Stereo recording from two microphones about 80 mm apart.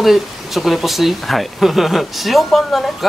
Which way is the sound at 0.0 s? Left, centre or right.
Centre.